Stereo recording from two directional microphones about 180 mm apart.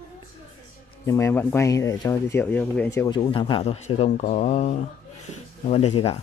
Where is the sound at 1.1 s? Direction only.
15° left (ahead or behind); by 6.2 s 35° left (ahead or behind).